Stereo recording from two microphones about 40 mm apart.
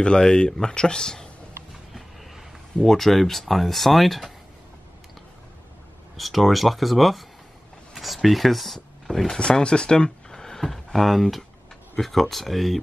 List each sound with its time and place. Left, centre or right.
0.0 s speech: left
1.7 s a sound: centre
6.1 s speech: centre
9.4 s speech: left
10.4 s speech: centre